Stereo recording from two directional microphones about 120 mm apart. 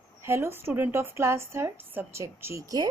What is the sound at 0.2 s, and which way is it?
Speech, 20° right (ahead or behind).